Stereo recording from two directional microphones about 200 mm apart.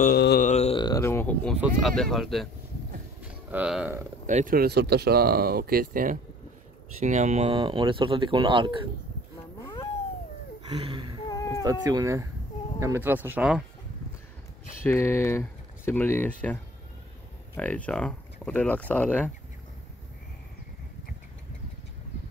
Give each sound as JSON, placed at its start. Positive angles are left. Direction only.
{"t": 0.0, "sound": "mantra", "side_deg": 50}
{"t": 0.5, "sound": "a sound", "side_deg": 30}
{"t": 1.8, "sound": "speech", "side_deg": 0}
{"t": 4.3, "sound": "speech", "side_deg": -40}
{"t": 9.6, "sound": "cat", "side_deg": 20}
{"t": 10.7, "sound": "speech", "side_deg": -25}
{"t": 11.2, "sound": "a sound", "side_deg": 15}
{"t": 11.6, "sound": "speech", "side_deg": -15}
{"t": 14.8, "sound": "speech", "side_deg": 10}